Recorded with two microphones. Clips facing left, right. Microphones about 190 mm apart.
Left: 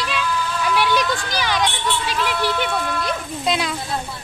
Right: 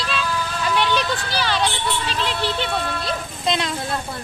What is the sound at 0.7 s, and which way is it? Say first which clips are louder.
Speech: left 1 dB; 10° left (ahead or behind).